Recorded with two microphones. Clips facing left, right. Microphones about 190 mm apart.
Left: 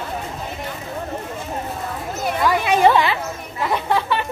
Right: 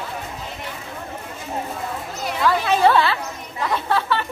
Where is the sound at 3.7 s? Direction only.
15° left (ahead or behind).